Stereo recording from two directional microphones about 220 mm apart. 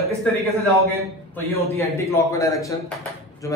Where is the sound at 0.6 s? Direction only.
15° right (ahead or behind).